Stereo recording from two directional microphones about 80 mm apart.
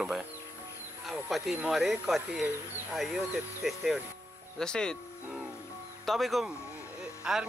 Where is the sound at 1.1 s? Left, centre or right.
Centre.